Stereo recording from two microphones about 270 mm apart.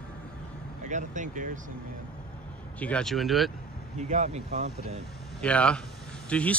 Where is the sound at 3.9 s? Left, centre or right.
Right.